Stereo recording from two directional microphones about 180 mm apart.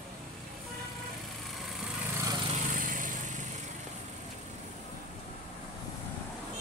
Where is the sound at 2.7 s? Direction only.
50° right (ahead or behind).